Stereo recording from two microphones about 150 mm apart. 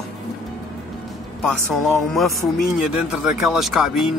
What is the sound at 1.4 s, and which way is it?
Speech, centre (ahead or behind).